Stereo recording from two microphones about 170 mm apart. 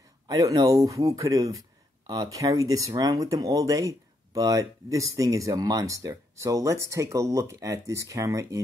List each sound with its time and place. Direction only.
0.3 s speech: 20° right (ahead or behind)